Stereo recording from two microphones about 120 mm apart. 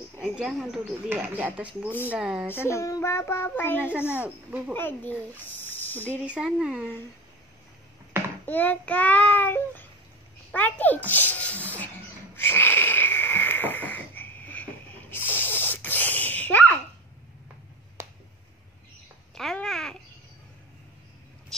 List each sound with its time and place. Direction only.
0.2 s speech: 5° right (ahead or behind)
1.0 s speech: 15° right (ahead or behind)
2.5 s a child's voice: 20° left (ahead or behind)
4.1 s speech: 10° right (ahead or behind)
4.7 s speech: 15° left (ahead or behind)
6.2 s speech: 10° right (ahead or behind)
8.5 s child singing: 15° left (ahead or behind)
11.1 s a sound: 15° left (ahead or behind)
12.4 s wheeze: 15° left (ahead or behind)
18.0 s finger snapping: 20° right (ahead or behind)
19.3 s babbling: 5° left (ahead or behind)